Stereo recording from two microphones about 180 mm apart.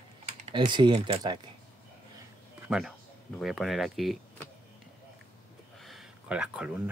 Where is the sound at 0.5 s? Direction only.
25° right (ahead or behind).